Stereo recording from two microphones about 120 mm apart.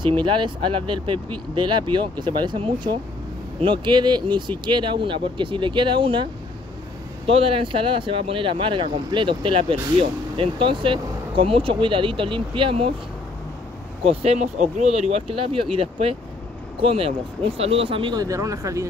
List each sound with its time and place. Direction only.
0.0 s speech: 40° right (ahead or behind)
7.2 s speech: 50° right (ahead or behind)
14.0 s speech: 60° right (ahead or behind)
18.1 s speech: 30° right (ahead or behind)